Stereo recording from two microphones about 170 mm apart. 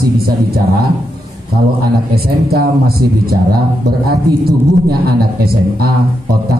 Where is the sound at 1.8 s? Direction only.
65° right (ahead or behind).